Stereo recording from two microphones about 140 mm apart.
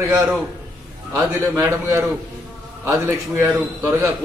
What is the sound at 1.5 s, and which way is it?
A man's voice, 20° right (ahead or behind).